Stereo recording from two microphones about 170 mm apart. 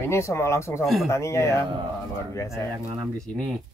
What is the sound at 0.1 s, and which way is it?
Speech, 15° left (ahead or behind).